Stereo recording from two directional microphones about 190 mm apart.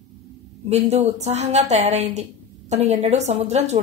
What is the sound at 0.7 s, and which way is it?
A woman's voice, 35° right (ahead or behind).